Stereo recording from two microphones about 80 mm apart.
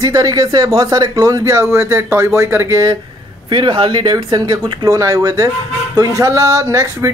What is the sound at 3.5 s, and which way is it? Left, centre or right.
Speech, right.